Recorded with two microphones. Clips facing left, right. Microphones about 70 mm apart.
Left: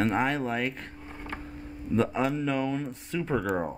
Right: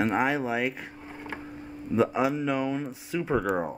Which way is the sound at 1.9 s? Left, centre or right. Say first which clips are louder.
Right 2 dB; centre.